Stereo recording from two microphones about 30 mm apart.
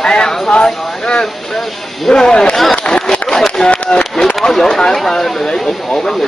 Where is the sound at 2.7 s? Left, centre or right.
Left.